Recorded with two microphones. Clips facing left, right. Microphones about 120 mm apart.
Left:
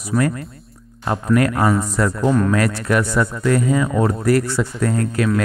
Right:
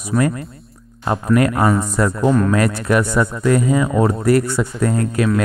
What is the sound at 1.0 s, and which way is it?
Speech, 20° right (ahead or behind).